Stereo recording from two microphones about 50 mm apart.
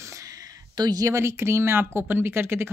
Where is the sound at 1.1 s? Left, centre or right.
Right.